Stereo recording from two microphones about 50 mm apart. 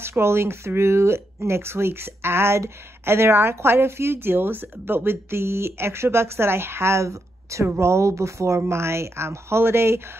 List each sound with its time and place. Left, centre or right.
0.0 s speech: right